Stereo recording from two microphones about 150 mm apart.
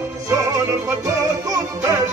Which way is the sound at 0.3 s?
20° right (ahead or behind).